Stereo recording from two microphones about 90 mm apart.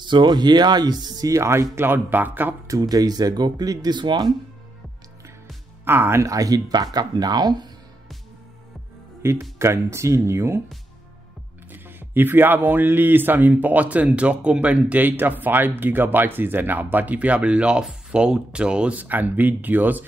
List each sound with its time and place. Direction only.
0.0 s speech: 60° right (ahead or behind); by 2.5 s 20° right (ahead or behind)
2.7 s speech: 45° right (ahead or behind)
5.9 s speech: 25° right (ahead or behind)
6.2 s speech: 40° right (ahead or behind)
9.2 s speech: 30° right (ahead or behind)
11.7 s speech: 25° right (ahead or behind)